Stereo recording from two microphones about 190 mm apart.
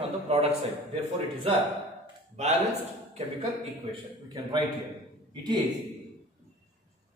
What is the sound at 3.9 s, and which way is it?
Speech, 25° right (ahead or behind).